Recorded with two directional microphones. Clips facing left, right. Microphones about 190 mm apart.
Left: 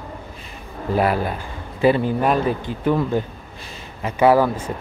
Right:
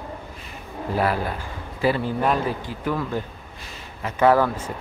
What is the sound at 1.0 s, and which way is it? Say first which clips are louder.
A man's voice: left 3 dB; 20° left (ahead or behind).